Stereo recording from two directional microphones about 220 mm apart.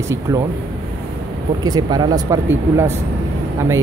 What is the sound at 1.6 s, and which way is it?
Speech, 15° right (ahead or behind).